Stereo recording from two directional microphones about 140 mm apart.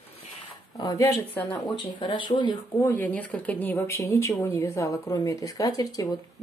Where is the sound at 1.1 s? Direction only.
15° left (ahead or behind).